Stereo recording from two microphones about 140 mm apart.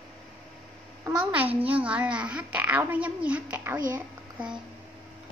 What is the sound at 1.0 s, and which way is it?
A child's voice, 10° right (ahead or behind).